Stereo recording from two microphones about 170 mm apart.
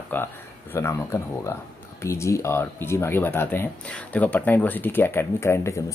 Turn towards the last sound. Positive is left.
turn(degrees=15)  # may be behind; listen again after turning